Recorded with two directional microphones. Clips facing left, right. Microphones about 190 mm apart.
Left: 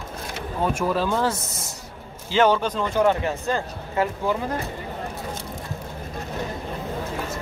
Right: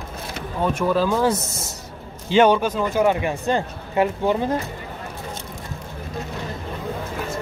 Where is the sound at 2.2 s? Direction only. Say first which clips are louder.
Right 3 dB; 15° right (ahead or behind).